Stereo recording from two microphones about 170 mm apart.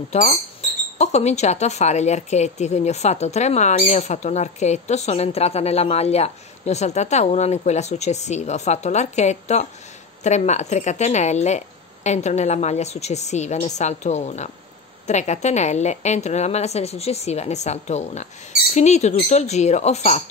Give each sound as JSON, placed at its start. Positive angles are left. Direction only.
{"t": 0.1, "sound": "speech", "side_deg": 40}